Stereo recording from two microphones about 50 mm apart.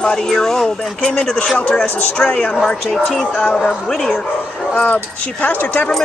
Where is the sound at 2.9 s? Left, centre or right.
Centre.